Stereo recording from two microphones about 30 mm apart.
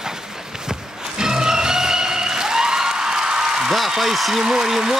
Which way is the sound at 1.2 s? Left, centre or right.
Right.